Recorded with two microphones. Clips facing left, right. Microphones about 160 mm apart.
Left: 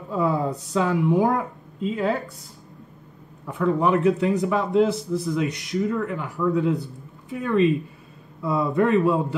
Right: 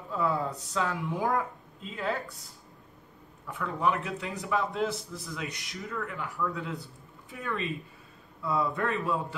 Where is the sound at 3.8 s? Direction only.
25° left (ahead or behind).